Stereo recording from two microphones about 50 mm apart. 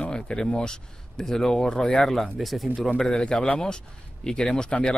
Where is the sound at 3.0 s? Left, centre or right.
Centre.